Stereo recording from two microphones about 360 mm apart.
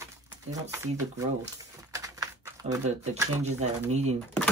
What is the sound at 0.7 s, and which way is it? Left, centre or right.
Speech, centre.